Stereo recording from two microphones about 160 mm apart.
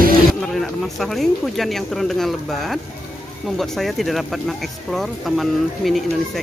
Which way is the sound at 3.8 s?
Centre (ahead or behind).